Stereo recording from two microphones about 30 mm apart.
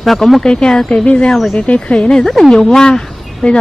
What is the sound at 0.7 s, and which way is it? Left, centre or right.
Speech, centre.